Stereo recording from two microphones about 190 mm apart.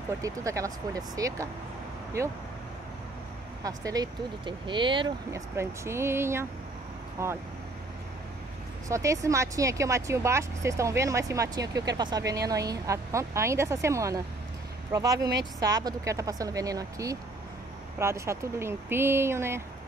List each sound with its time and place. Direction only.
0.2 s speech: 15° right (ahead or behind)
3.6 s speech: 20° right (ahead or behind)
5.6 s speech: 15° right (ahead or behind)
8.8 s speech: 15° right (ahead or behind)